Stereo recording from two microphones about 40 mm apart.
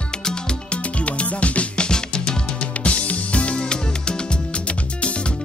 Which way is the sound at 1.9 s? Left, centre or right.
Centre.